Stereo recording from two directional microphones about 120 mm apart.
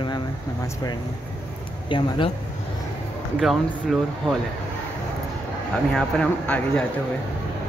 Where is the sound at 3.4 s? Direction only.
Centre (ahead or behind).